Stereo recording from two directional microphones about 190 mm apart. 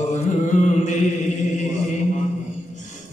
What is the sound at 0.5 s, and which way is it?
Mantra, 40° left (ahead or behind).